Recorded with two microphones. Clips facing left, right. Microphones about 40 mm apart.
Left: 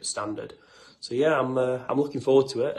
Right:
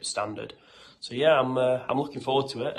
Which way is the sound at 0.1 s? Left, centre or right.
Right.